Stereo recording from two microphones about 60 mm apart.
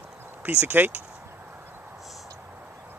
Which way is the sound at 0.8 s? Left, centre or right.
Right.